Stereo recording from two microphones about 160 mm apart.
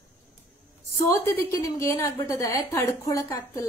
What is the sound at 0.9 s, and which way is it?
A woman's voice, 20° left (ahead or behind).